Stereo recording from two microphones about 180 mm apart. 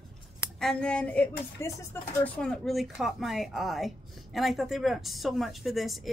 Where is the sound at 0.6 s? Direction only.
5° left (ahead or behind).